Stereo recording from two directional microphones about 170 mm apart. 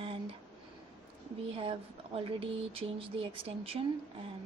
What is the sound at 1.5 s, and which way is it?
Speech, 30° right (ahead or behind).